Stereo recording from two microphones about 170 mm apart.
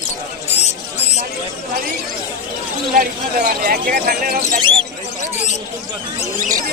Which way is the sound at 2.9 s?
55° right (ahead or behind).